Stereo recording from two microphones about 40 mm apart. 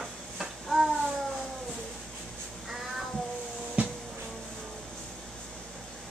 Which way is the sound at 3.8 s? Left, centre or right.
Right.